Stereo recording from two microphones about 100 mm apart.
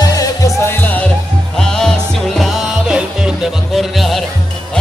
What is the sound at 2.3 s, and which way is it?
Music, 5° right (ahead or behind).